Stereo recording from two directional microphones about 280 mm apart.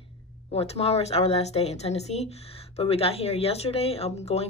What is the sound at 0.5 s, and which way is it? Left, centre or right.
A woman's voice, left.